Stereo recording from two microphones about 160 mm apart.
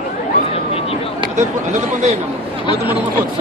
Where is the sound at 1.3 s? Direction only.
50° right (ahead or behind).